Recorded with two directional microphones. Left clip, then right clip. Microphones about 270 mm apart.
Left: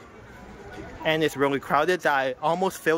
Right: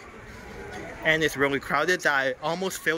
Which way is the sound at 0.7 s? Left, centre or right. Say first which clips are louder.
Right 1 dB; centre.